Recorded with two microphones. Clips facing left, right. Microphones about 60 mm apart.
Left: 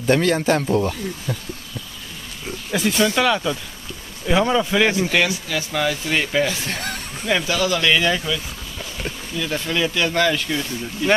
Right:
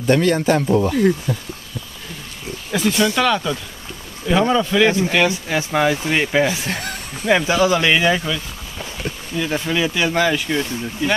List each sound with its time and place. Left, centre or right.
0.0 s speech: centre
2.7 s speech: centre
5.0 s speech: right